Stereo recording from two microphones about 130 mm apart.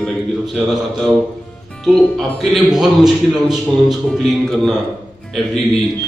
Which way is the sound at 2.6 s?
Centre (ahead or behind).